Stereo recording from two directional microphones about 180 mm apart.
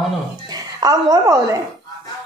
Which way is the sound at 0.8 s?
20° right (ahead or behind).